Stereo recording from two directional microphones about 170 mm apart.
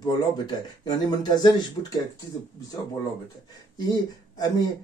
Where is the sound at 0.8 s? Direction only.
25° left (ahead or behind).